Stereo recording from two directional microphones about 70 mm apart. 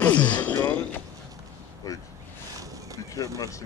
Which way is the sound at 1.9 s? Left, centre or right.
Left.